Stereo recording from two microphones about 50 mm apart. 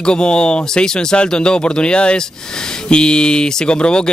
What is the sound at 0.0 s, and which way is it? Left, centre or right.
A man's voice, centre.